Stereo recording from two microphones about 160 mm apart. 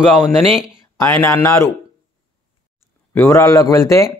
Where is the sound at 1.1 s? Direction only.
15° left (ahead or behind).